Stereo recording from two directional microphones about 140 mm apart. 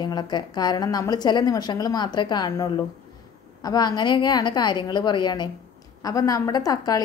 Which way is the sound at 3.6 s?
30° left (ahead or behind).